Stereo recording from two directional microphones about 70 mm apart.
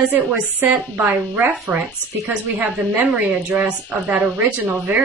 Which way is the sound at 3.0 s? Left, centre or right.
Centre.